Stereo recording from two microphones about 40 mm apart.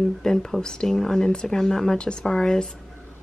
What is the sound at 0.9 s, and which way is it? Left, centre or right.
Speech, centre.